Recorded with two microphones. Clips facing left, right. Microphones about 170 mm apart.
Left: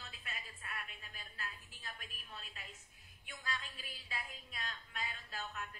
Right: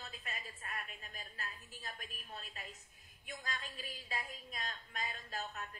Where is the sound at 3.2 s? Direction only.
40° right (ahead or behind).